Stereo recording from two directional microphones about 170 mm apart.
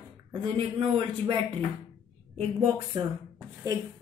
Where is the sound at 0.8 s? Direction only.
35° right (ahead or behind).